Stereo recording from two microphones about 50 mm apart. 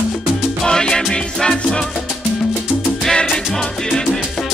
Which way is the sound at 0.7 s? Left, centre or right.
Centre.